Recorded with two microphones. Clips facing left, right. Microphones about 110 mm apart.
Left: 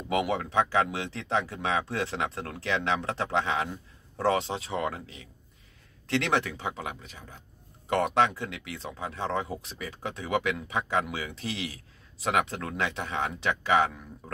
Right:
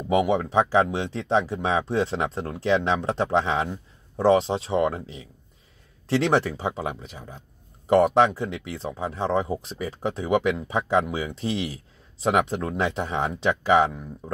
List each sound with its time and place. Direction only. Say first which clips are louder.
0.2 s speech: right 5 dB; 25° right (ahead or behind)
6.0 s speech: right 6 dB; 30° right (ahead or behind)
12.3 s speech: right 5 dB; 15° right (ahead or behind)
12.7 s speech: right 4 dB; 30° right (ahead or behind)